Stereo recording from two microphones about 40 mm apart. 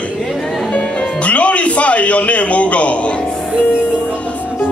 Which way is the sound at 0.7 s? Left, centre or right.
Left.